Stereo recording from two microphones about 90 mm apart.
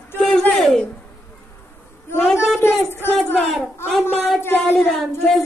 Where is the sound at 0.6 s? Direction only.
5° left (ahead or behind).